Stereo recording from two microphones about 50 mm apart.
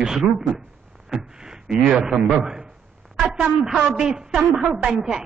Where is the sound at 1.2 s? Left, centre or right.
Centre.